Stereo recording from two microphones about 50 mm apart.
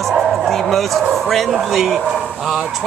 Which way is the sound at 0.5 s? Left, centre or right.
Centre.